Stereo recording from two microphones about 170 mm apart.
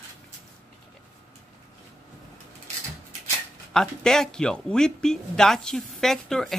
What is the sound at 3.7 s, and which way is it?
Speech, 5° left (ahead or behind).